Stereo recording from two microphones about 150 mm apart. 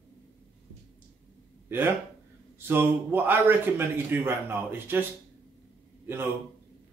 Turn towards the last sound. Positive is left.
turn(degrees=-15)  # may be behind; listen again after turning